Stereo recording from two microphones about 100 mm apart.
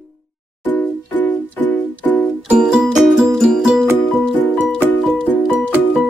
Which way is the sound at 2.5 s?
5° right (ahead or behind).